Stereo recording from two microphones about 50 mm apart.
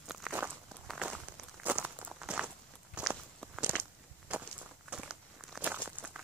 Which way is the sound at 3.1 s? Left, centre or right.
Right.